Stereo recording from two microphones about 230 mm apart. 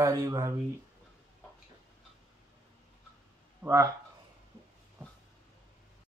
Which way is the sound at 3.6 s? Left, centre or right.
Centre.